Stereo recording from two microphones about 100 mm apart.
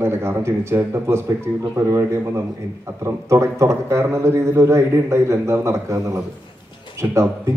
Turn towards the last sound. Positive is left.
turn(degrees=-30)  # may be behind; listen again after turning